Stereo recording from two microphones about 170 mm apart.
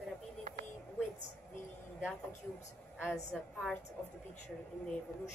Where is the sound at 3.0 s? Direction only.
5° right (ahead or behind).